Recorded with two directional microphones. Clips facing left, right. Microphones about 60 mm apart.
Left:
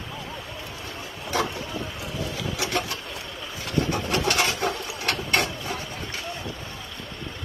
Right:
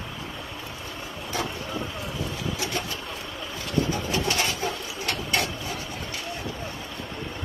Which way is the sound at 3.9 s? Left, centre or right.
Left.